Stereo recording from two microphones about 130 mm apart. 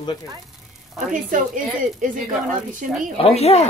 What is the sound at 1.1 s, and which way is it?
A woman's voice, 90° right.